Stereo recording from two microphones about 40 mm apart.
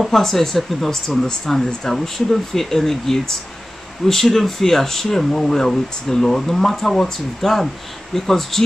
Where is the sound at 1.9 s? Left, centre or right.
Centre.